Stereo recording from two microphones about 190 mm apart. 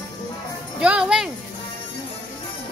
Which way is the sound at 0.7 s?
5° right (ahead or behind).